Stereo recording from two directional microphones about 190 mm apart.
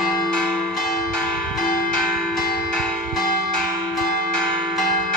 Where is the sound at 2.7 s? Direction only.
Centre (ahead or behind).